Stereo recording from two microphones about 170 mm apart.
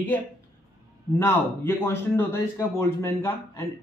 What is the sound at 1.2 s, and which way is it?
A man's voice, 10° left (ahead or behind).